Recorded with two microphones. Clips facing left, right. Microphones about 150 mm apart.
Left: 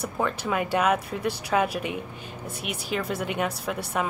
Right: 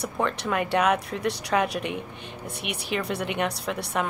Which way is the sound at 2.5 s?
65° right (ahead or behind).